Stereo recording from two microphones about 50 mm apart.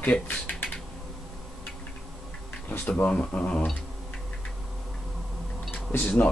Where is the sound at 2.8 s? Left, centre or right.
Left.